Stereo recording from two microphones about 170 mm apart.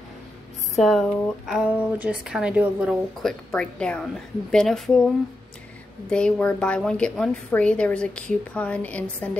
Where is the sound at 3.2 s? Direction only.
5° left (ahead or behind).